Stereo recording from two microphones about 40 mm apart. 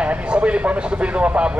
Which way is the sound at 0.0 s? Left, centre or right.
Right.